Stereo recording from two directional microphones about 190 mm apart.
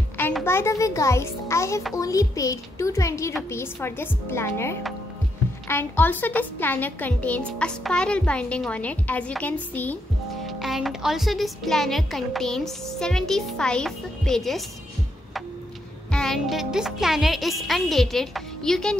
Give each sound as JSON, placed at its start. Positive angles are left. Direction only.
{"t": 0.2, "sound": "a child's voice", "side_deg": 10}
{"t": 16.1, "sound": "speech", "side_deg": 5}